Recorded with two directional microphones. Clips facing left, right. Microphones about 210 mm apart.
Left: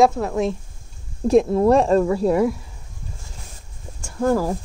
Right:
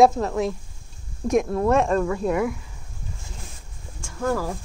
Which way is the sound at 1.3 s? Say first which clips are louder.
Left 5 dB; 30° left (ahead or behind).